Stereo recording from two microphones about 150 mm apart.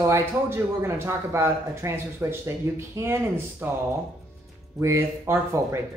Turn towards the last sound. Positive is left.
turn(degrees=-15)  # may be behind; listen again after turning